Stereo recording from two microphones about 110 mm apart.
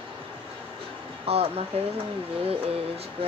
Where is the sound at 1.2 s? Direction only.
65° right (ahead or behind).